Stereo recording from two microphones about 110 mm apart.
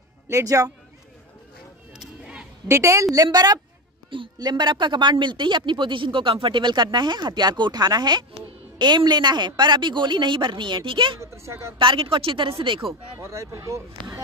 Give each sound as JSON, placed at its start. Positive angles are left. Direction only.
{"t": 0.3, "sound": "a woman's voice", "side_deg": -30}
{"t": 2.0, "sound": "a sound", "side_deg": -10}
{"t": 2.7, "sound": "a woman's voice", "side_deg": -30}
{"t": 11.1, "sound": "speech", "side_deg": -25}
{"t": 11.8, "sound": "a man's voice", "side_deg": -50}
{"t": 13.2, "sound": "speech", "side_deg": -25}